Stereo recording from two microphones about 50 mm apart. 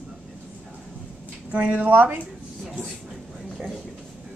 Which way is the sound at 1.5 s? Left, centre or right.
Right.